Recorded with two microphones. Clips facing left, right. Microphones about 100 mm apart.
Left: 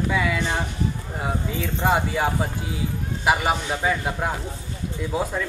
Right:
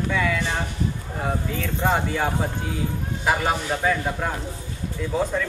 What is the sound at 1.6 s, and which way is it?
Speech, 10° left (ahead or behind).